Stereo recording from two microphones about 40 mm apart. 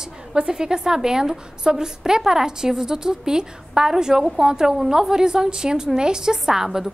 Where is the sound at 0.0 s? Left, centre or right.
Centre.